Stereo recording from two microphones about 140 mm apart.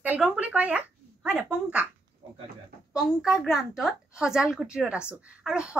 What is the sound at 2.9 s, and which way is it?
A woman's voice, 5° right (ahead or behind).